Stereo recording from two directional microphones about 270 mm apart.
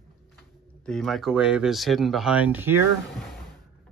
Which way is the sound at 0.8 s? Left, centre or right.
Centre.